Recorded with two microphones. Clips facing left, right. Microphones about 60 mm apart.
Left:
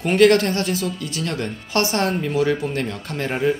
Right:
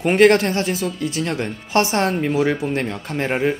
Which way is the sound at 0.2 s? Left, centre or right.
Right.